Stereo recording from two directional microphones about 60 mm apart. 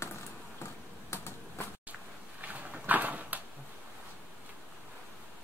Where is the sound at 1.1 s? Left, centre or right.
Left.